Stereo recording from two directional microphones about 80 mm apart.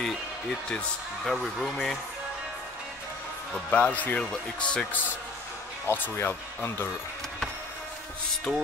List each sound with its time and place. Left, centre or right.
0.7 s speech: centre
1.3 s speech: centre
3.7 s speech: centre
5.9 s speech: left
8.5 s speech: centre